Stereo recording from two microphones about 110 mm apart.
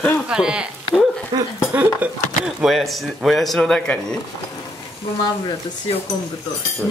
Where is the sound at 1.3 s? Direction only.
40° right (ahead or behind).